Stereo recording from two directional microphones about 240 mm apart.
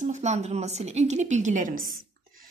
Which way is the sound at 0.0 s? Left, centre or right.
Right.